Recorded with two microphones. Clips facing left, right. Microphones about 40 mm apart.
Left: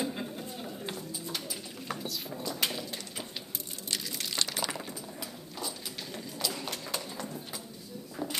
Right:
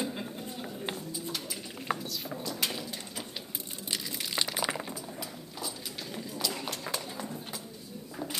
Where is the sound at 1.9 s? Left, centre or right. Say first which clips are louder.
Right 5 dB; centre.